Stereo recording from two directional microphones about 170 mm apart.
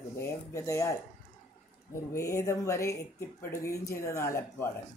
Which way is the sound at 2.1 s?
15° left (ahead or behind).